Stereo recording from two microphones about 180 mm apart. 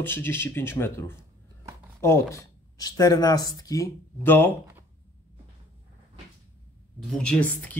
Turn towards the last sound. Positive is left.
turn(degrees=5)  # may be behind; listen again after turning